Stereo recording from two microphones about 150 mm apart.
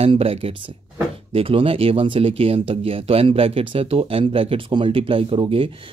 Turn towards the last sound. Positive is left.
turn(degrees=-35)  # may be behind; listen again after turning